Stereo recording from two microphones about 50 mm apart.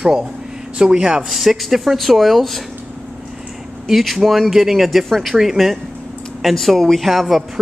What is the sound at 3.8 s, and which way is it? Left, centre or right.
Speech, centre.